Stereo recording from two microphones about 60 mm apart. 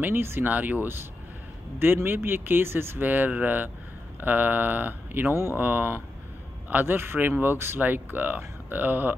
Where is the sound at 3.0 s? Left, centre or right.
Right.